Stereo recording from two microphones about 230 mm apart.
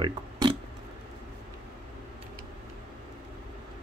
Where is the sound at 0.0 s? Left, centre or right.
Centre.